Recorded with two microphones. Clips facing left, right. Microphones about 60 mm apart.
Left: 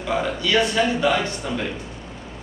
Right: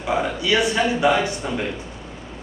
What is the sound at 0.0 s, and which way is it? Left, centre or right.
A man's voice, centre.